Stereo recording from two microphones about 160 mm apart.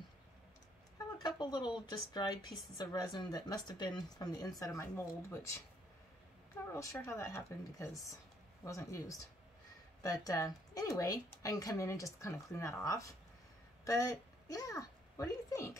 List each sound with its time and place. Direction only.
0.9 s speech: 25° left (ahead or behind)
6.7 s a child's voice: 15° left (ahead or behind)